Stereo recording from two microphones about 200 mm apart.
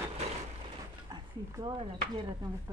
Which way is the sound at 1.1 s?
20° right (ahead or behind).